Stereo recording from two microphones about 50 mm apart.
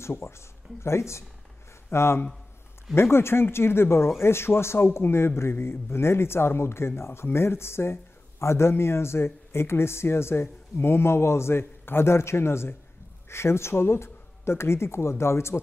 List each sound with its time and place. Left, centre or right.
0.0 s speech: left